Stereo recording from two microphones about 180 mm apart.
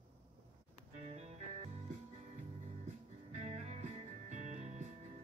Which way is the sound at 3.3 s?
40° right (ahead or behind).